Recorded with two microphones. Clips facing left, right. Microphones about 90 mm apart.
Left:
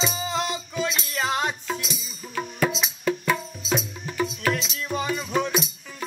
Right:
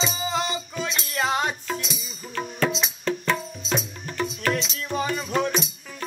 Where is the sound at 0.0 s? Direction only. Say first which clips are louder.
Even; centre (ahead or behind).